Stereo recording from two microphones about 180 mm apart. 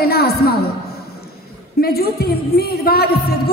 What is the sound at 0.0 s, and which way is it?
Speech, 60° left (ahead or behind).